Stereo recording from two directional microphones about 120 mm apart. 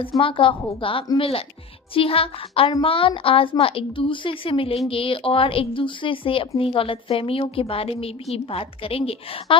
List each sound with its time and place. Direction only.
0.2 s a woman's voice: 45° left (ahead or behind)